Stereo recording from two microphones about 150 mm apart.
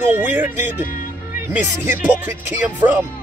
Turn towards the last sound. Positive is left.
turn(degrees=-15)  # may be behind; listen again after turning